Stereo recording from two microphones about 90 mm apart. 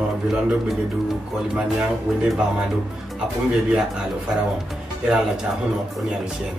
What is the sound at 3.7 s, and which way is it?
Speech, 5° right (ahead or behind).